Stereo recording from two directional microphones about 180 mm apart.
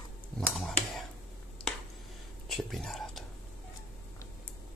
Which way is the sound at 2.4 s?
Centre (ahead or behind).